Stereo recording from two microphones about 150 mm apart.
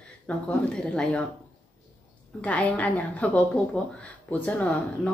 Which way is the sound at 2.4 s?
10° left (ahead or behind).